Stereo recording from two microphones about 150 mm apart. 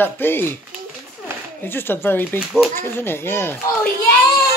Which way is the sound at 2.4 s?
5° right (ahead or behind).